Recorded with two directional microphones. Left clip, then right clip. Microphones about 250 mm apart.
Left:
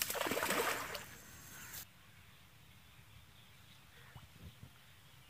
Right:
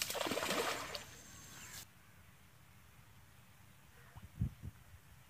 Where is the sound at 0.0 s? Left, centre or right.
Centre.